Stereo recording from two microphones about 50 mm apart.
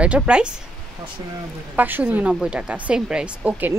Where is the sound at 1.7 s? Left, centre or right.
Right.